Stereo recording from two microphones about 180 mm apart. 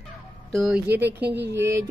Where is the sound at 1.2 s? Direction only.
70° right (ahead or behind).